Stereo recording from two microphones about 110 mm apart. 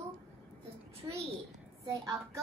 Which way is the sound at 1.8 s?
30° right (ahead or behind).